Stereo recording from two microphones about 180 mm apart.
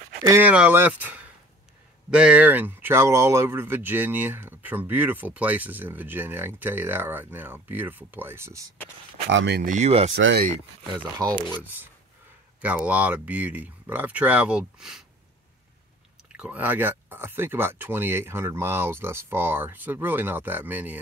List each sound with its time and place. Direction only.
0.4 s speech: 10° right (ahead or behind)
9.3 s speech: 90° right
9.6 s speech: 45° right (ahead or behind)
10.1 s speech: 65° right (ahead or behind)
11.0 s speech: 20° right (ahead or behind)
11.6 s speech: 10° right (ahead or behind)
16.3 s speech: 5° right (ahead or behind)